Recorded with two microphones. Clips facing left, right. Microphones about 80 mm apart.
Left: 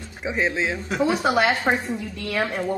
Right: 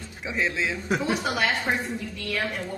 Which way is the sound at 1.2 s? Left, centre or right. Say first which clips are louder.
Left 6 dB; left.